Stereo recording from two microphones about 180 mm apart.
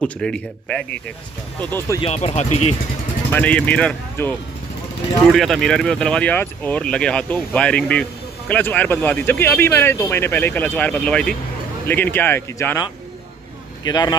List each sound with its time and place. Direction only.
0.0 s a man's voice: 5° left (ahead or behind)
2.0 s speech: 35° left (ahead or behind)
3.3 s speech: 10° left (ahead or behind)
13.8 s a man's voice: 20° left (ahead or behind)